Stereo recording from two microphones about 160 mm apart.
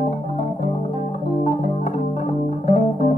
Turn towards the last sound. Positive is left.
turn(degrees=55)  # may be behind; listen again after turning